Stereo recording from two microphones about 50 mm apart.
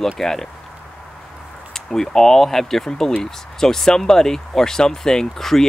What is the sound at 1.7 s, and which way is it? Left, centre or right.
Speech, centre.